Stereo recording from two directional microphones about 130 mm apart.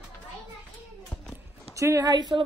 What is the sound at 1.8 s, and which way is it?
Speech, 25° right (ahead or behind).